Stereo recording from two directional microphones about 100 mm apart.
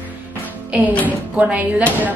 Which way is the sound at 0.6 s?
15° right (ahead or behind).